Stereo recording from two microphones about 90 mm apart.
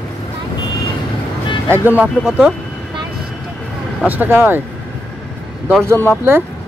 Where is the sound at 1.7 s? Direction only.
20° right (ahead or behind).